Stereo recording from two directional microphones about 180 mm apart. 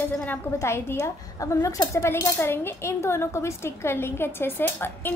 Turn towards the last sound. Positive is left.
turn(degrees=10)  # may be behind; listen again after turning